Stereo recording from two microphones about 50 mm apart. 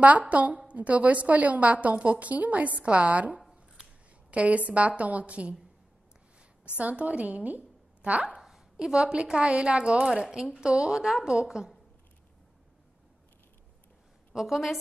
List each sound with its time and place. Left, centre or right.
0.3 s a woman's voice: right
6.6 s a woman's voice: right
8.4 s a sound: centre
8.7 s a woman's voice: centre
14.3 s a woman's voice: centre